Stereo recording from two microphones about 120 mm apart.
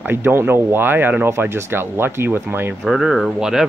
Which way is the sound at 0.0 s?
15° right (ahead or behind).